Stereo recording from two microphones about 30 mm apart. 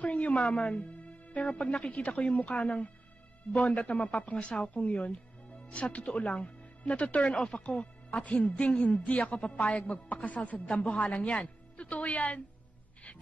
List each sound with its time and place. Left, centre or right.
0.0 s speech: left
6.0 s speech: left
7.2 s speech: left
7.8 s speech: left
10.7 s a woman's voice: left